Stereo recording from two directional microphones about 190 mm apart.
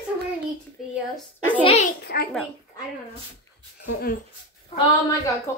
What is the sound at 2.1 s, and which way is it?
Speech, 65° left (ahead or behind).